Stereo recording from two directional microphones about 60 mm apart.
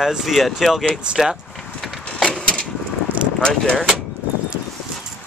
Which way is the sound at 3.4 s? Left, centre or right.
Centre.